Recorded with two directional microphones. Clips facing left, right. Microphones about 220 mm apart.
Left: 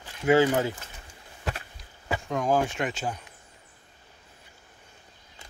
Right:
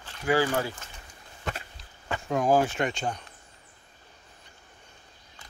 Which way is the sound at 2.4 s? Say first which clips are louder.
Right 2 dB; 5° right (ahead or behind).